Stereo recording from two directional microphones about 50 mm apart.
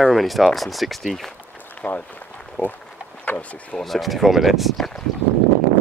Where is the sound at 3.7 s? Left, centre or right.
Centre.